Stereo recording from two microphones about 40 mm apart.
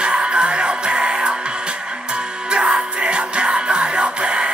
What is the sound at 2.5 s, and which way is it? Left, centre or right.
Music, right.